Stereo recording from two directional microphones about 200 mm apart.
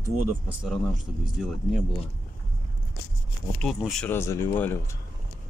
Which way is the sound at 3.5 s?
5° left (ahead or behind).